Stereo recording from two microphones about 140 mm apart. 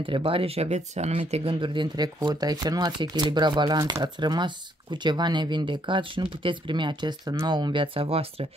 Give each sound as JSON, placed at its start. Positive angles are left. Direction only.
{"t": 0.0, "sound": "speech", "side_deg": -40}